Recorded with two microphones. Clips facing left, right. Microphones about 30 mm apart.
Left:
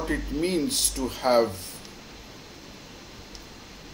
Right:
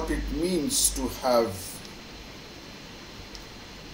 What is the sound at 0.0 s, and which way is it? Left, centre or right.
Speech, centre.